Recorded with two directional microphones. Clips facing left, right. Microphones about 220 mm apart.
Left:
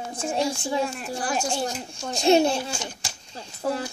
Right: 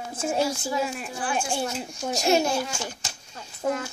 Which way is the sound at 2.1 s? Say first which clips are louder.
Left 4 dB; 30° left (ahead or behind).